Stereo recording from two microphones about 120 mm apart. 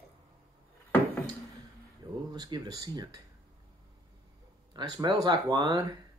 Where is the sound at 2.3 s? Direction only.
35° right (ahead or behind).